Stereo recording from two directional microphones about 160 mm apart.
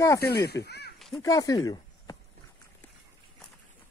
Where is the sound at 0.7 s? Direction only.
90° left.